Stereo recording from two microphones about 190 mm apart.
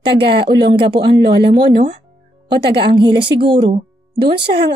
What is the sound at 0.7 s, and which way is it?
A woman's voice, 25° right (ahead or behind).